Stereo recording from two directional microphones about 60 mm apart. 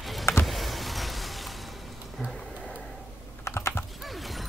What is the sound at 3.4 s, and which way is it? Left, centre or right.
Typing, left.